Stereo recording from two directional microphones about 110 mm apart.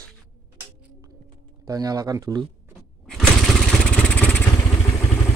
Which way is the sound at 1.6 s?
35° right (ahead or behind).